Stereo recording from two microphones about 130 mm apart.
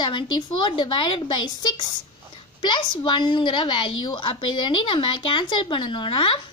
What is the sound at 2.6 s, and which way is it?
A woman's voice, 35° left (ahead or behind).